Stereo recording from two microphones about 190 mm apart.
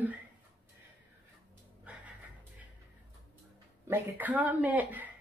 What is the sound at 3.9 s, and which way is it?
Speech, 10° right (ahead or behind).